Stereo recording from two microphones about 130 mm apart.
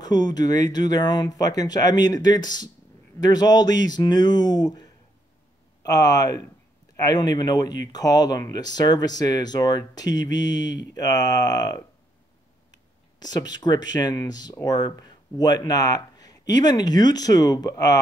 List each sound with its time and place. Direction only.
0.0 s speech: 30° left (ahead or behind)
5.9 s speech: 30° left (ahead or behind)